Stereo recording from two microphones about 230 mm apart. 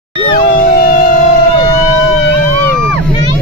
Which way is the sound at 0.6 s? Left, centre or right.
Left.